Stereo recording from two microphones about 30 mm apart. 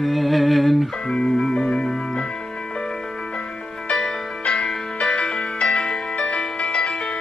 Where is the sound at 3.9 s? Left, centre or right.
Left.